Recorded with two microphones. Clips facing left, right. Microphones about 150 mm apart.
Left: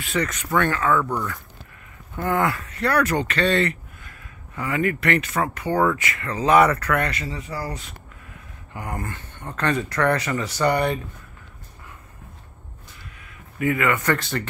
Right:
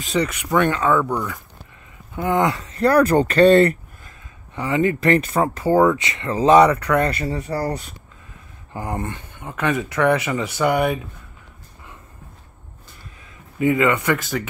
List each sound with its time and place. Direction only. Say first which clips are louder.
0.1 s speech: right 3 dB; 10° right (ahead or behind)
2.8 s speech: right 6 dB; 35° right (ahead or behind)
4.6 s speech: right 4 dB; 25° right (ahead or behind)
5.8 s speech: right 4 dB; 20° right (ahead or behind); by 7.7 s 40° right (ahead or behind)
8.7 s speech: right 4 dB; 25° right (ahead or behind)
9.4 s speech: right 2 dB; 10° right (ahead or behind)
13.6 s speech: right 4 dB; 20° right (ahead or behind)
14.0 s speech: right 2 dB; 5° right (ahead or behind)